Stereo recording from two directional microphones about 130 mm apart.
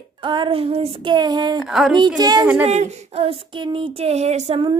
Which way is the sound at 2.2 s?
30° right (ahead or behind).